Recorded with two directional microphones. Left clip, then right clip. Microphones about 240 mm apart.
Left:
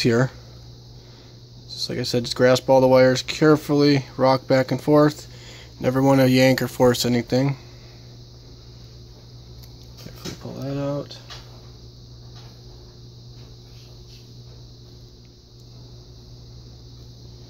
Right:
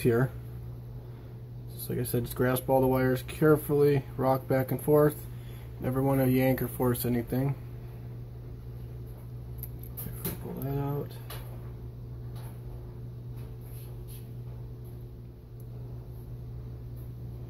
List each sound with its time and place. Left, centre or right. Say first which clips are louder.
0.0 s speech: left 7 dB; left
1.9 s speech: left 8 dB; left
10.7 s a sound: left 9 dB; left